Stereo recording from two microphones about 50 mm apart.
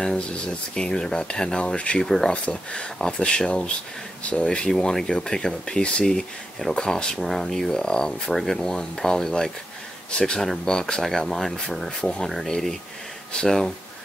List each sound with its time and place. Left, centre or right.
0.0 s speech: centre
2.0 s speech: centre
2.3 s speech: left
4.6 s speech: centre